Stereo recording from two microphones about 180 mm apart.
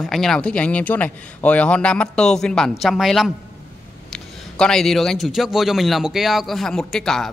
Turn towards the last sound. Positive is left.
turn(degrees=5)  # may be behind; listen again after turning